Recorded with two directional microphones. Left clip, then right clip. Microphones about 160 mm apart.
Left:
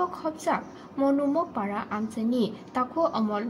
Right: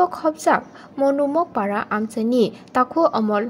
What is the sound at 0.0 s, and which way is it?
A woman's voice, 40° right (ahead or behind).